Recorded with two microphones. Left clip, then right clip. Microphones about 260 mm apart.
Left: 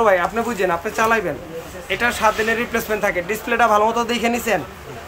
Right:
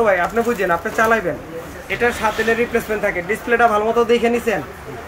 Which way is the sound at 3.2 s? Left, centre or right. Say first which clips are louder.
Right 4 dB; centre.